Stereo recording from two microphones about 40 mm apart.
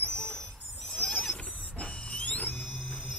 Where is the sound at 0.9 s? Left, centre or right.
Left.